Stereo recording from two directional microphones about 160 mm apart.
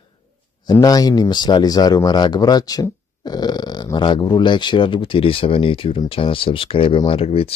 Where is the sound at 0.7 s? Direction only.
25° left (ahead or behind).